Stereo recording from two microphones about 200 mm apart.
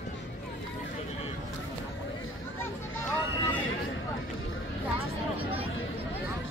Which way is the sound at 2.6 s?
10° left (ahead or behind).